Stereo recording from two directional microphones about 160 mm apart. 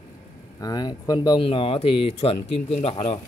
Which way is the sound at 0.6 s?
25° left (ahead or behind).